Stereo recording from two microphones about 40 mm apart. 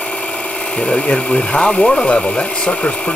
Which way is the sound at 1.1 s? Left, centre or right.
Left.